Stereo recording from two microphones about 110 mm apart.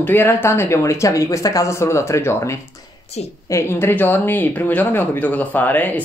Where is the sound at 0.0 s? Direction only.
20° left (ahead or behind).